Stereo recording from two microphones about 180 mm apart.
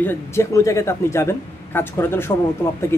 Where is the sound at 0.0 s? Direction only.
15° left (ahead or behind).